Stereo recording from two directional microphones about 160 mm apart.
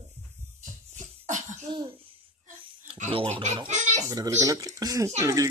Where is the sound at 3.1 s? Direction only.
35° right (ahead or behind).